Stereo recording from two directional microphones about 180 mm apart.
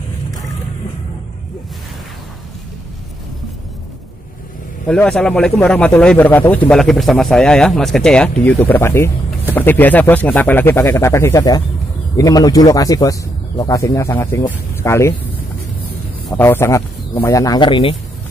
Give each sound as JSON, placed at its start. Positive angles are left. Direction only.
{"t": 4.8, "sound": "a man's voice", "side_deg": 5}
{"t": 16.3, "sound": "a man's voice", "side_deg": 10}